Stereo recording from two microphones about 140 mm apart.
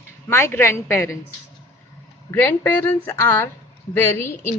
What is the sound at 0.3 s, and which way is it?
Speech, 20° left (ahead or behind).